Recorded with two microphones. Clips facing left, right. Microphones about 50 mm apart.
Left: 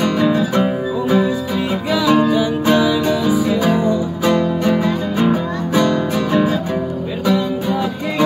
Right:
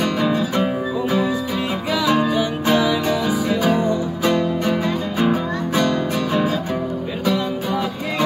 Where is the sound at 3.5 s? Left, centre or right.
Centre.